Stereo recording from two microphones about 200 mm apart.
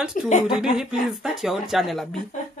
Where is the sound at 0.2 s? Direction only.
40° left (ahead or behind).